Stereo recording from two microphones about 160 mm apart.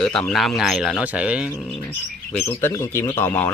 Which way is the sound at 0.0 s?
5° left (ahead or behind).